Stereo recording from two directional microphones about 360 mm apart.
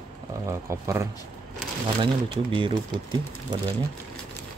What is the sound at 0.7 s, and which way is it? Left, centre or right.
Speech, centre.